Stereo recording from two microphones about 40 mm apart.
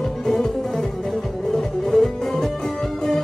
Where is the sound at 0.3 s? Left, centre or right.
Centre.